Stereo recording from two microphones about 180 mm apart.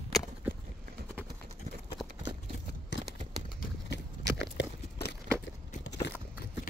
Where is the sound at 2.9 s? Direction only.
80° left.